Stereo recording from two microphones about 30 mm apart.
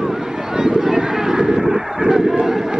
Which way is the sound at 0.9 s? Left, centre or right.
Centre.